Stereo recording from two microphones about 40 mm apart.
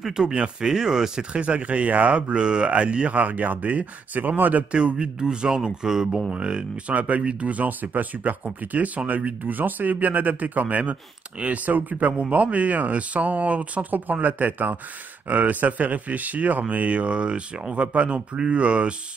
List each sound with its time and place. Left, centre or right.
0.1 s speech: centre
1.3 s speech: right
3.2 s speech: right
4.7 s speech: right
6.9 s speech: right